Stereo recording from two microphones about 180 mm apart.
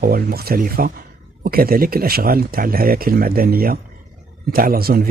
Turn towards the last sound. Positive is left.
turn(degrees=-55)  # may be behind; listen again after turning